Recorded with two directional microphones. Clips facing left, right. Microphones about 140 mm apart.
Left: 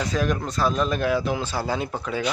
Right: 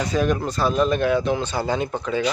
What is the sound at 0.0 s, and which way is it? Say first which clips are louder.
Speech: right 3 dB; centre (ahead or behind).